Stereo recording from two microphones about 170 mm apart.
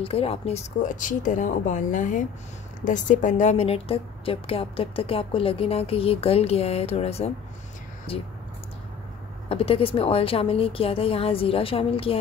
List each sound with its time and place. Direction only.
0.0 s a woman's voice: 35° left (ahead or behind)
9.5 s a woman's voice: 35° left (ahead or behind)